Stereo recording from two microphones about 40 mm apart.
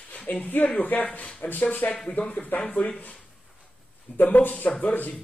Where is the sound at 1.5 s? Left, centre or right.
Left.